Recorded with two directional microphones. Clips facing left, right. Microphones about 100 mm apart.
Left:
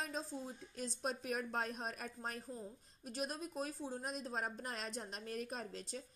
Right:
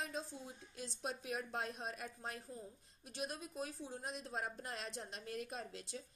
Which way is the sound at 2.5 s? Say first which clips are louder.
Left 3 dB; 35° left (ahead or behind).